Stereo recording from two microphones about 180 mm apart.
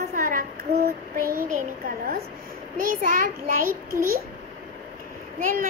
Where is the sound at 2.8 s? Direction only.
50° right (ahead or behind).